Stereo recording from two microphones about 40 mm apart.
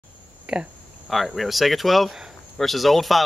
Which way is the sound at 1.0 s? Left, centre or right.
Centre.